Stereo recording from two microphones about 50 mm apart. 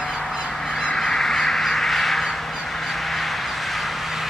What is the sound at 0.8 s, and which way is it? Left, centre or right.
Duck, centre.